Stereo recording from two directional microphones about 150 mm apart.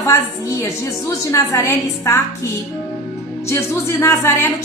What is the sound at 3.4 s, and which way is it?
Speech, 20° left (ahead or behind).